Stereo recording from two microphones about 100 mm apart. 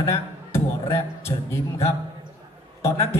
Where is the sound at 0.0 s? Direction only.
30° left (ahead or behind).